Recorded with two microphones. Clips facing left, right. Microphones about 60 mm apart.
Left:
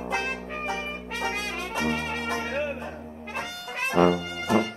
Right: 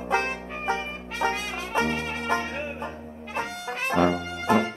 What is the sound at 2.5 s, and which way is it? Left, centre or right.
Music, left.